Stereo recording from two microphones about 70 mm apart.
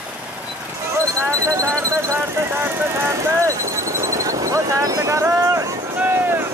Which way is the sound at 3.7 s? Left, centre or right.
Right.